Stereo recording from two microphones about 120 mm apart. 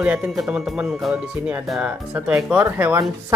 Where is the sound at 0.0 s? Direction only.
10° right (ahead or behind).